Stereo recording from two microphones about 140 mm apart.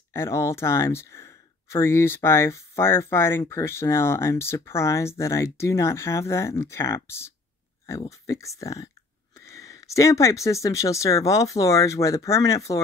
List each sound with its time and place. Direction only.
0.1 s speech: 20° left (ahead or behind)
8.3 s speech: 20° left (ahead or behind)